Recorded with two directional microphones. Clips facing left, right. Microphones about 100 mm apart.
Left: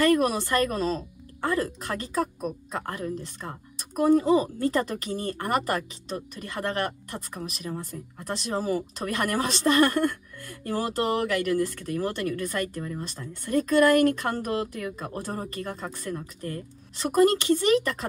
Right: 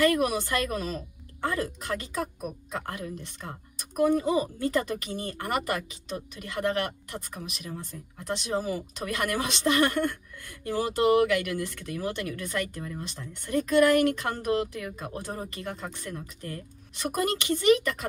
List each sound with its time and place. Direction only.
0.1 s speech: 40° left (ahead or behind)